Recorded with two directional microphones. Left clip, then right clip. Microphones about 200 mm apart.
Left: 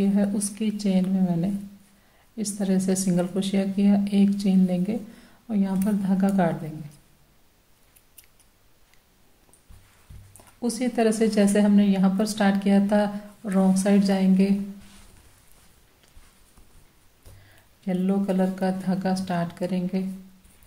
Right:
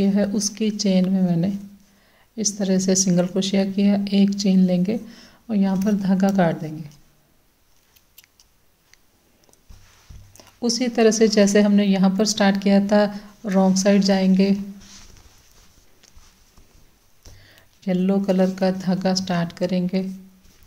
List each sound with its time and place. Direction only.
0.0 s a woman's voice: 30° right (ahead or behind)
10.3 s a woman's voice: 30° right (ahead or behind)
17.5 s a woman's voice: 30° right (ahead or behind)